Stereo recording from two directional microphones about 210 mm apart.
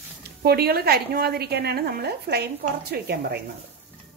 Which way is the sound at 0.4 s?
50° right (ahead or behind).